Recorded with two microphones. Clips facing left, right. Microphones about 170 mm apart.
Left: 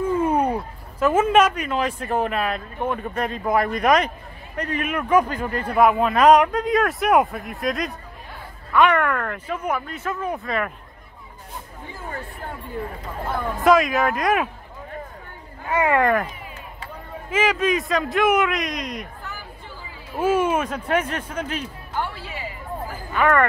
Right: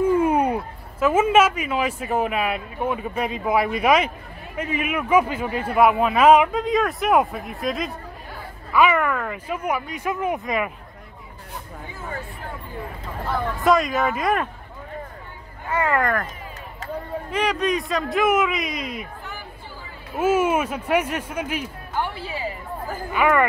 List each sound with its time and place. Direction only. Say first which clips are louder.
0.2 s speech: right 1 dB; 10° right (ahead or behind)
13.6 s speech: left 3 dB; centre (ahead or behind)
15.7 s speech: left 3 dB; 15° left (ahead or behind)
17.3 s speech: left 2 dB; centre (ahead or behind)
20.2 s speech: right 1 dB; 5° right (ahead or behind)
23.1 s speech: even; 10° right (ahead or behind)